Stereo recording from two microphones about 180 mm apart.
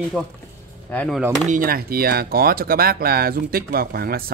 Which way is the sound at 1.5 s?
55° right (ahead or behind).